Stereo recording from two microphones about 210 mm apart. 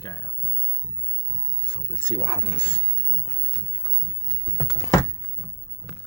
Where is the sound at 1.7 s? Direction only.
20° left (ahead or behind).